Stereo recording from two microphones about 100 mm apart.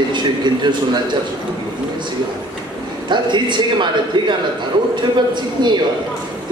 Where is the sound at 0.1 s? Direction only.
50° right (ahead or behind).